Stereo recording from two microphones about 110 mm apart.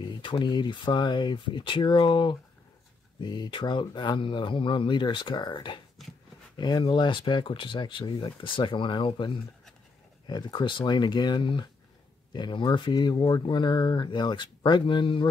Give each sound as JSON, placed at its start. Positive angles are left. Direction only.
{"t": 0.2, "sound": "speech", "side_deg": 45}